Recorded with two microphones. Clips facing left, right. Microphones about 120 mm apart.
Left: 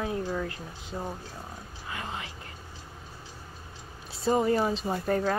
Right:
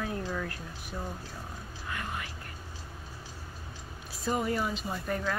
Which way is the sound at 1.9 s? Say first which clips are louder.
Left 1 dB; 25° left (ahead or behind).